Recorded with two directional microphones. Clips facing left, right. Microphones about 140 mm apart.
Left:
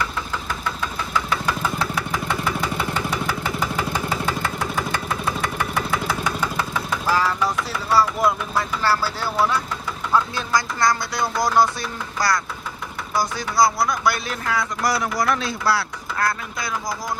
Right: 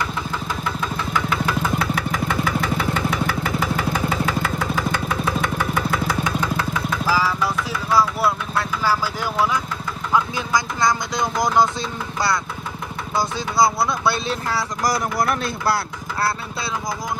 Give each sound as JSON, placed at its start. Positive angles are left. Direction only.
{"t": 7.1, "sound": "vehicle", "side_deg": -5}
{"t": 10.1, "sound": "speech", "side_deg": -20}
{"t": 13.1, "sound": "speech", "side_deg": -25}